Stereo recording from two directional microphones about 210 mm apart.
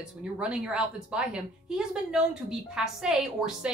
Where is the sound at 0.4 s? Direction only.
5° right (ahead or behind).